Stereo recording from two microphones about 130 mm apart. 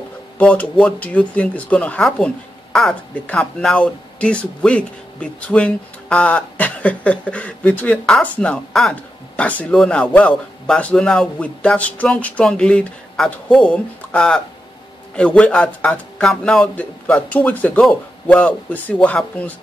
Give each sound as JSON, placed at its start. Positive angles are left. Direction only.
{"t": 0.4, "sound": "speech", "side_deg": 10}